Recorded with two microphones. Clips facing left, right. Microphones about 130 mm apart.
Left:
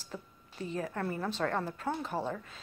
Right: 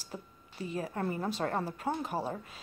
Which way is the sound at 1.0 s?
15° right (ahead or behind).